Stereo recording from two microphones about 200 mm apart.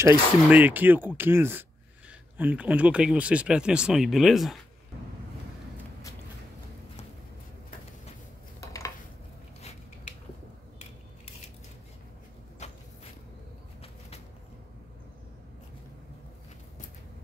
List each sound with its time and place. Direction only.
0.0 s speech: 10° right (ahead or behind)
8.5 s dishes: 15° left (ahead or behind)